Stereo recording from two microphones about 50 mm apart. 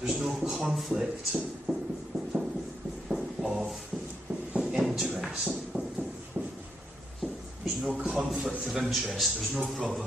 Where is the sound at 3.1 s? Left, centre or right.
Centre.